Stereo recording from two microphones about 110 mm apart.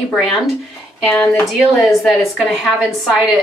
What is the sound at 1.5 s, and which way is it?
Speech, centre (ahead or behind).